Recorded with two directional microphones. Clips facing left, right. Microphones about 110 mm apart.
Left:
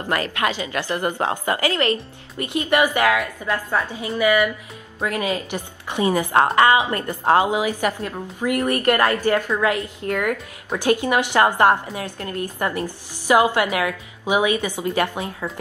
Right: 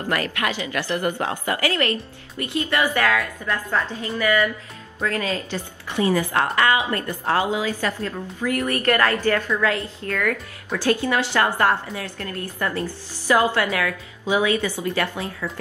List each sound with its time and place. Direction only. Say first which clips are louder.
0.1 s a woman's voice: left 2 dB; 25° left (ahead or behind)